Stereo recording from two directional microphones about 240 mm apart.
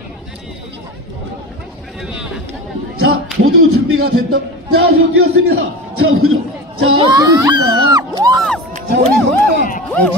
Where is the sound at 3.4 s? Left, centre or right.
Right.